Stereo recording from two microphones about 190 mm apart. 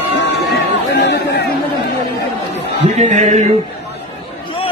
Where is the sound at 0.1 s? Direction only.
65° left (ahead or behind).